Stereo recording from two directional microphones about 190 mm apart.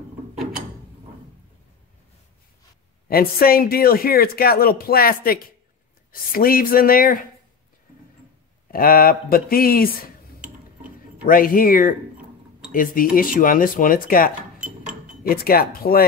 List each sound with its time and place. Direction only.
3.1 s speech: 50° left (ahead or behind)
8.6 s speech: 50° left (ahead or behind)
10.4 s a sound: 5° right (ahead or behind)
11.2 s speech: 45° left (ahead or behind)